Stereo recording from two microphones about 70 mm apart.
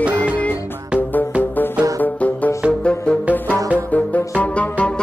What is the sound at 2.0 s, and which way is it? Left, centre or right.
Music, left.